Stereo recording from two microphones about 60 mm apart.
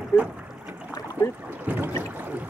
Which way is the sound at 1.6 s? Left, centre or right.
Right.